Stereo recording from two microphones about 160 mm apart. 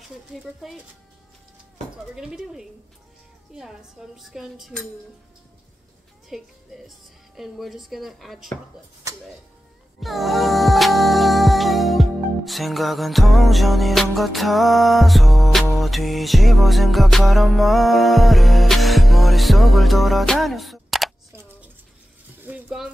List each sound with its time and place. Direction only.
0.4 s speech: centre (ahead or behind)
2.1 s speech: 5° right (ahead or behind)
6.2 s speech: centre (ahead or behind)
9.9 s music: centre (ahead or behind)
21.3 s scissors: 15° right (ahead or behind)
22.4 s a sound: 5° right (ahead or behind)